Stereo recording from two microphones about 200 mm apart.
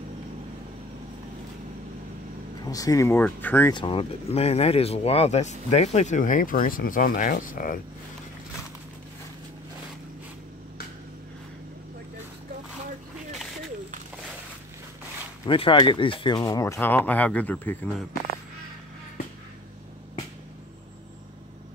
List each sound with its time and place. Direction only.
2.7 s speech: 15° left (ahead or behind)
3.7 s speech: 25° left (ahead or behind); by 7.8 s 45° left (ahead or behind)
15.4 s speech: 25° left (ahead or behind); by 18.0 s 10° left (ahead or behind)